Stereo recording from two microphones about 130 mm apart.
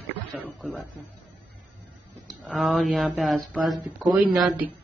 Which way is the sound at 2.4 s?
Centre (ahead or behind).